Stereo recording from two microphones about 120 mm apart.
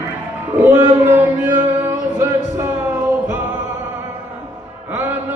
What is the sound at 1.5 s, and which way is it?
Singing, 20° right (ahead or behind).